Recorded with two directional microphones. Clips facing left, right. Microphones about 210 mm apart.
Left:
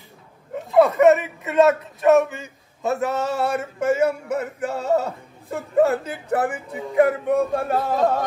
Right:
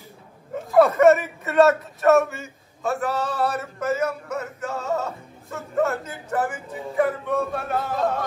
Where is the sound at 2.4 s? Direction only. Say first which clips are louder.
Left 2 dB; 20° left (ahead or behind).